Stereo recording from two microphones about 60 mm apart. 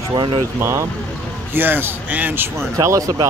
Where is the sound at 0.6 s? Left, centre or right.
Right.